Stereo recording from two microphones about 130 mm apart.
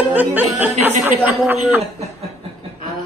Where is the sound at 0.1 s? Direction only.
15° right (ahead or behind).